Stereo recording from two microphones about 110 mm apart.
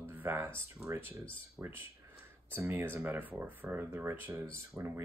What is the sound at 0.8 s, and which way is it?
Speech, 25° right (ahead or behind).